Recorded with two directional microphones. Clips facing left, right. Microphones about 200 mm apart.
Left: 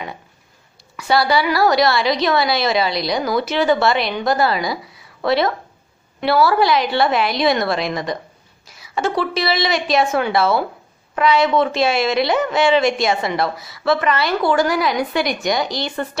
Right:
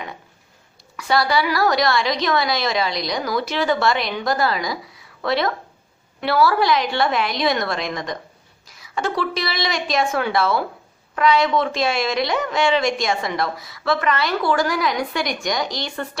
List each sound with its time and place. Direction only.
0.9 s a woman's voice: 5° left (ahead or behind)
4.0 s a woman's voice: 25° left (ahead or behind)
4.4 s a woman's voice: 5° left (ahead or behind)
8.6 s a sound: 5° left (ahead or behind)
9.2 s a woman's voice: 5° left (ahead or behind)